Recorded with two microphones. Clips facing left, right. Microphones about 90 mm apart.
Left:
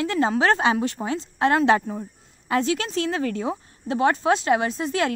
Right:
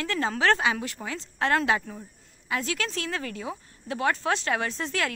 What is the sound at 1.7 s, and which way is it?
Speech, 35° left (ahead or behind).